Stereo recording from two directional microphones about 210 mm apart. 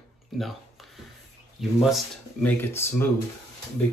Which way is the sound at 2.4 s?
10° left (ahead or behind).